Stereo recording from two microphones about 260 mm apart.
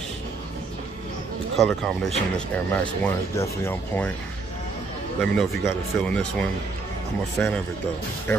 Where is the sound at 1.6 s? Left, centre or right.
Centre.